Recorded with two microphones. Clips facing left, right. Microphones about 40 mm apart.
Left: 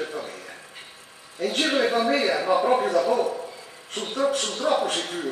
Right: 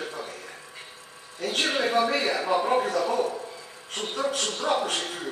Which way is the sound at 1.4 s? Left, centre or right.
Centre.